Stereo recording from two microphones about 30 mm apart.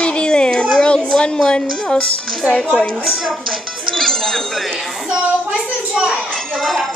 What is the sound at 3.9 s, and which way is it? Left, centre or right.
Speech, centre.